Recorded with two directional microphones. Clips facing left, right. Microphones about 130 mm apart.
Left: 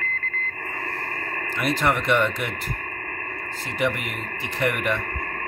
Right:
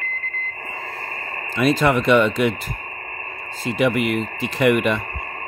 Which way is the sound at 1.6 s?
90° right.